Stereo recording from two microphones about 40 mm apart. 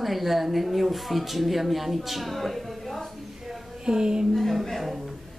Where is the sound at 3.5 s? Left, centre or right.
Centre.